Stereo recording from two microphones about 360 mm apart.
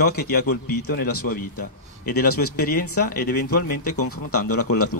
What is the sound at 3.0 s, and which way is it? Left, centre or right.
Speech, left.